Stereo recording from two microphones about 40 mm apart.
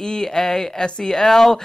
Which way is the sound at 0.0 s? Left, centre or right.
Centre.